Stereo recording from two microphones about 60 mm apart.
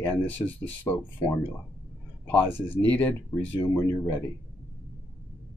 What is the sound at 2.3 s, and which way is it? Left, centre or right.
Speech, left.